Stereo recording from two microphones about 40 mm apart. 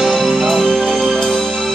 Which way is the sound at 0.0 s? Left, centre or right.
Centre.